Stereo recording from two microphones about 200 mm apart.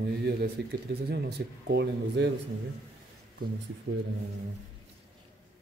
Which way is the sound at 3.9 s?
50° right (ahead or behind).